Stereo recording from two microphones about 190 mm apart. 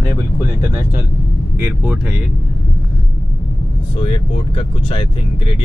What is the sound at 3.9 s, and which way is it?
Speech, 30° left (ahead or behind).